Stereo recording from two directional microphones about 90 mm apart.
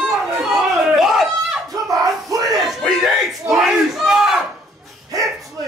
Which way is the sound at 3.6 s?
5° right (ahead or behind).